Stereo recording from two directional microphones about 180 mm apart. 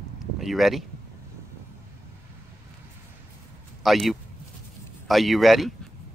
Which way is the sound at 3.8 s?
Centre (ahead or behind).